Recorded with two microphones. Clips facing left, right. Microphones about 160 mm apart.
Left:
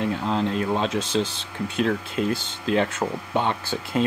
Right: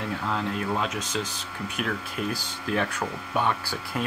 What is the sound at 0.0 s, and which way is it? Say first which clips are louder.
Speech: left 5 dB; 25° left (ahead or behind).